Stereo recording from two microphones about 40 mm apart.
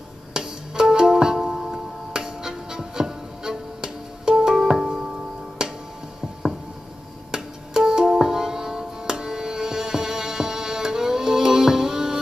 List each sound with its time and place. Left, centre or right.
0.3 s music: centre
7.2 s music: centre